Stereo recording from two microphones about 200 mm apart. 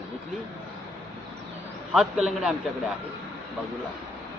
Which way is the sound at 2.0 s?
Centre (ahead or behind).